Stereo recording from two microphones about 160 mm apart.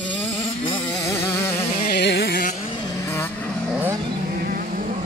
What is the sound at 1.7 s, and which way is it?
Carnatic music, 80° left.